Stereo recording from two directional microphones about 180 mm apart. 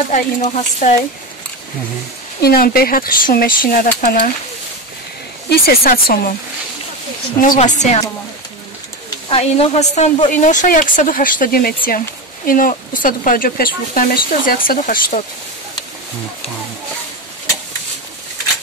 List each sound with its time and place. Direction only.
0.1 s speech: 40° left (ahead or behind)
2.4 s speech: 55° left (ahead or behind)
5.5 s speech: 55° left (ahead or behind)
7.3 s speech: 45° left (ahead or behind)
9.3 s speech: 35° left (ahead or behind)